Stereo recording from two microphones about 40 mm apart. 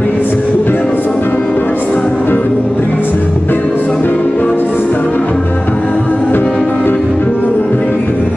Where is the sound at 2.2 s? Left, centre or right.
Left.